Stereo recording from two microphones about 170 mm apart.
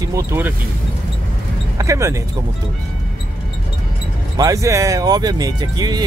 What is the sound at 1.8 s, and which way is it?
Speech, 15° right (ahead or behind).